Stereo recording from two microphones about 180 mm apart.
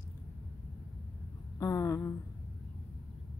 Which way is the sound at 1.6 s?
20° left (ahead or behind).